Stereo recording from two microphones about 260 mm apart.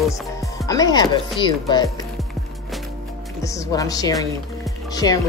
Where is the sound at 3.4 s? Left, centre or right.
Centre.